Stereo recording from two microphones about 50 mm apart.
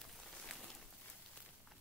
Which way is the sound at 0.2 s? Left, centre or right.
Centre.